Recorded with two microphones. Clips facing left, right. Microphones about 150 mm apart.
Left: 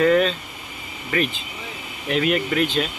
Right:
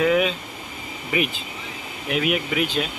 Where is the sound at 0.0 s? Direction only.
10° right (ahead or behind).